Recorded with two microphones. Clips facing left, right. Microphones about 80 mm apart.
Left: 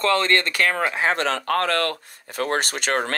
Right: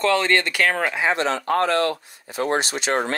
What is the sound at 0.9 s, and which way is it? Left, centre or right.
Speech, left.